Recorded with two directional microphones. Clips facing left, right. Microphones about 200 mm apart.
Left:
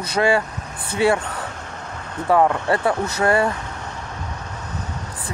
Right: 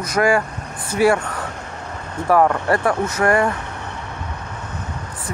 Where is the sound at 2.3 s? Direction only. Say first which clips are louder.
Right 1 dB; 25° left (ahead or behind).